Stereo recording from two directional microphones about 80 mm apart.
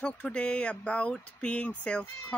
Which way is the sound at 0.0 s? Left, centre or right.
Centre.